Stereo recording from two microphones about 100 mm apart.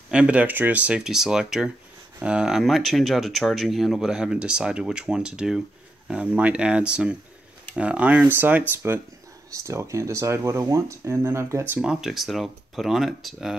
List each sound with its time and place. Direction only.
0.1 s speech: 10° right (ahead or behind)
11.8 s speech: 5° right (ahead or behind)